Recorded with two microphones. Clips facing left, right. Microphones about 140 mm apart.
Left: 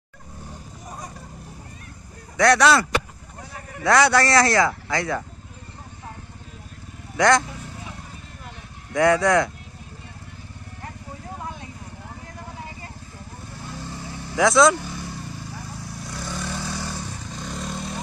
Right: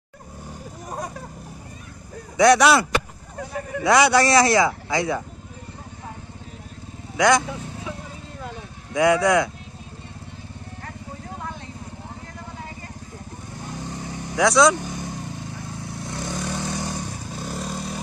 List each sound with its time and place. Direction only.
2.3 s speech: 15° right (ahead or behind)
7.2 s speech: 10° right (ahead or behind)
8.9 s speech: 15° right (ahead or behind)
13.7 s vehicle: 20° right (ahead or behind)
14.3 s speech: centre (ahead or behind)
14.8 s vehicle: 20° right (ahead or behind)
16.2 s vehicle: 50° right (ahead or behind)
16.5 s vehicle: 20° right (ahead or behind); by 18.0 s centre (ahead or behind)